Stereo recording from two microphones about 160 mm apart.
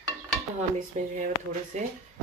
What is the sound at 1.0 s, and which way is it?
Speech, 50° right (ahead or behind).